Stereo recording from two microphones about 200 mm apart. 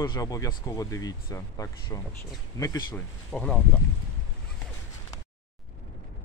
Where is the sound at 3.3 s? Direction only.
Centre (ahead or behind).